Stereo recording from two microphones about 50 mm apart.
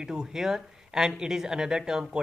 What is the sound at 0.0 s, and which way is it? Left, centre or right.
Speech, centre.